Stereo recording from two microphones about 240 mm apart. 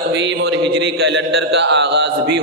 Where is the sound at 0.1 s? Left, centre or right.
Right.